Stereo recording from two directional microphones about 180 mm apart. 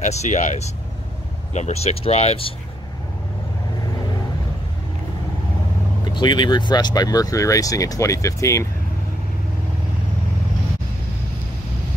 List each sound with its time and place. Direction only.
0.0 s speech: 40° left (ahead or behind)
6.1 s speech: 25° left (ahead or behind)